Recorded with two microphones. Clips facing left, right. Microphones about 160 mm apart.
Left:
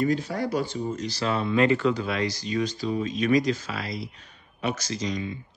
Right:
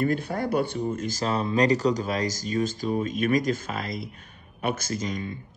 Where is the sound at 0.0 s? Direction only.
55° right (ahead or behind).